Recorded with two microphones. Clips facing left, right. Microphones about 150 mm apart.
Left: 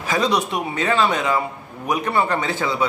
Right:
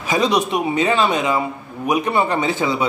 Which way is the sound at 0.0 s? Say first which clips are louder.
Right 2 dB; 15° right (ahead or behind).